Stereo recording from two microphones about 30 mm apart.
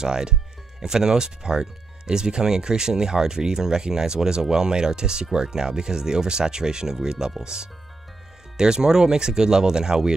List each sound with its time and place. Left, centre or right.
0.0 s speech: right